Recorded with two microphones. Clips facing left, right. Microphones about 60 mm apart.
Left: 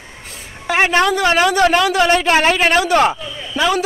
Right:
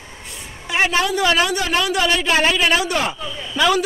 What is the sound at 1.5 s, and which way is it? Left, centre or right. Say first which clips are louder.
A man's voice: left 7 dB; left.